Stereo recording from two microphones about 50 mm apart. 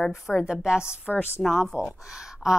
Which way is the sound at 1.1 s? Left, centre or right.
Centre.